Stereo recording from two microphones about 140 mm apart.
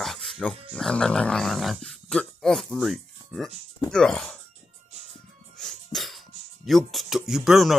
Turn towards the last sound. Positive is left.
turn(degrees=0)  # may be behind; listen again after turning